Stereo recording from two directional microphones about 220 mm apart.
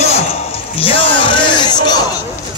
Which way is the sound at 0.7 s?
25° left (ahead or behind).